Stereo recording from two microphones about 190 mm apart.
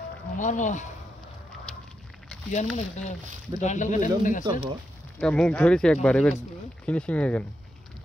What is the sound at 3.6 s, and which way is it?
Speech, 40° left (ahead or behind).